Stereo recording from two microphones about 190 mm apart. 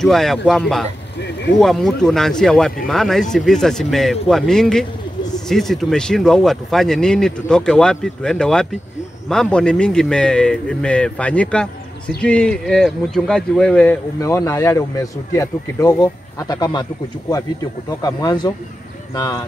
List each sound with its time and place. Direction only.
0.0 s speech: centre (ahead or behind)
14.2 s speech: 15° left (ahead or behind)